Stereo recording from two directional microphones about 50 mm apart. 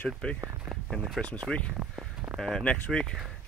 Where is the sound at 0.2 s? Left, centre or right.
Left.